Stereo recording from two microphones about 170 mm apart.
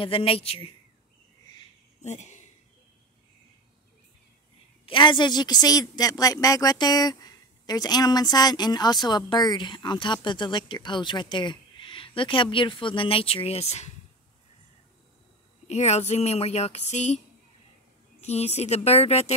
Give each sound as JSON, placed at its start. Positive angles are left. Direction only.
{"t": 0.0, "sound": "speech", "side_deg": 30}
{"t": 2.0, "sound": "speech", "side_deg": 45}
{"t": 4.8, "sound": "speech", "side_deg": 30}
{"t": 15.6, "sound": "speech", "side_deg": 40}
{"t": 18.2, "sound": "speech", "side_deg": 40}